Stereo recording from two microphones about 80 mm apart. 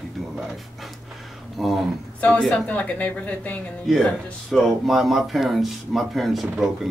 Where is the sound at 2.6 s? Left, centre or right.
Left.